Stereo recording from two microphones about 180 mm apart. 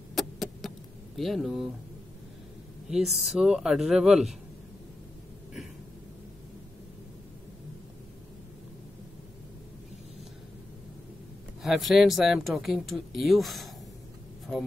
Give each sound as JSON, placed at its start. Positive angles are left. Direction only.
{"t": 0.1, "sound": "a sound", "side_deg": 0}
{"t": 2.9, "sound": "speech", "side_deg": 0}
{"t": 11.6, "sound": "speech", "side_deg": 0}